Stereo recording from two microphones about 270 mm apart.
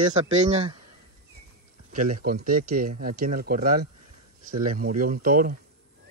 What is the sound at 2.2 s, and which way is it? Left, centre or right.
Speech, right.